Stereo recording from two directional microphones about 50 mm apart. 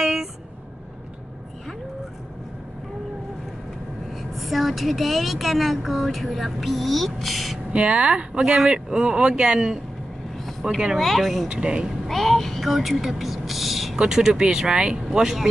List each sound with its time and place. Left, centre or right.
0.0 s vehicle: centre
4.4 s speech: centre
7.7 s speech: right; by 10.8 s centre
11.0 s speech: centre
11.4 s speech: right
12.1 s speech: centre